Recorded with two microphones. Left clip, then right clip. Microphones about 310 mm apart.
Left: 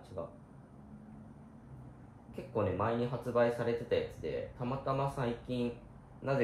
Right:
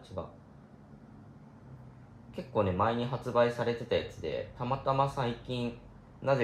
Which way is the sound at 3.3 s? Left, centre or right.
Right.